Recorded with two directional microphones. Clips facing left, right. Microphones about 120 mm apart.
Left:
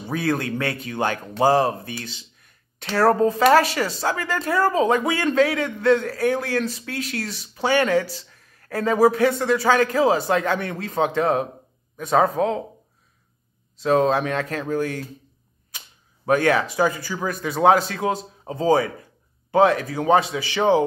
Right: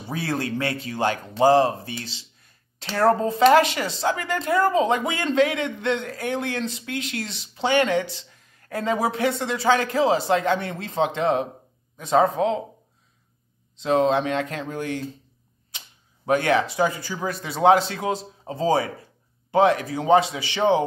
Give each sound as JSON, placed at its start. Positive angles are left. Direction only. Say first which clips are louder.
{"t": 0.1, "sound": "speech", "louder": "left 3 dB", "side_deg": -30}
{"t": 13.7, "sound": "speech", "louder": "left 1 dB", "side_deg": -25}
{"t": 16.3, "sound": "speech", "louder": "left 1 dB", "side_deg": -25}